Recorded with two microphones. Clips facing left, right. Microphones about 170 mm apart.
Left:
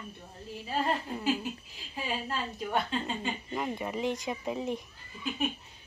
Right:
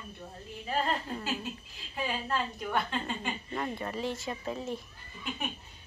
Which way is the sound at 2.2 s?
25° left (ahead or behind).